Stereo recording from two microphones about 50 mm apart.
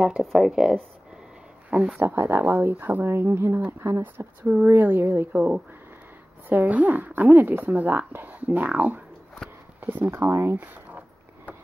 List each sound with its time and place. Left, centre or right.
0.2 s speech: centre
1.7 s speech: right
2.0 s a woman's voice: right
3.1 s speech: right
4.6 s a woman's voice: right
5.3 s a woman's voice: right
9.8 s a sound: right
10.0 s speech: right
10.6 s a sound: right